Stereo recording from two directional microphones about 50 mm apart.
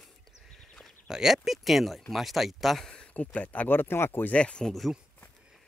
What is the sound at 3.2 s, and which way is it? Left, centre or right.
Speech, left.